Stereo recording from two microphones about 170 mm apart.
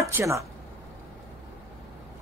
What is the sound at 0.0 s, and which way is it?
Speech, 15° right (ahead or behind).